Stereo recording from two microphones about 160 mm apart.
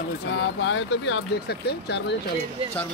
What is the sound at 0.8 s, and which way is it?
Speech, 90° left.